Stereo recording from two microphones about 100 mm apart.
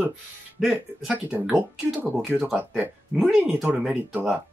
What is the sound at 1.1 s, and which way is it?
Speech, 15° right (ahead or behind).